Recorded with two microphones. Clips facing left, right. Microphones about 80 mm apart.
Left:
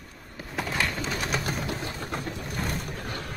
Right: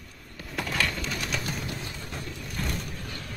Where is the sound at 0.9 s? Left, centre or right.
Left.